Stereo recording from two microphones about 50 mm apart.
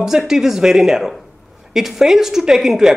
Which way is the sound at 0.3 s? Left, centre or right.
Centre.